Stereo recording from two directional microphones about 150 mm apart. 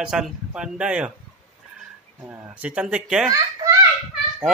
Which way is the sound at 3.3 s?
25° right (ahead or behind).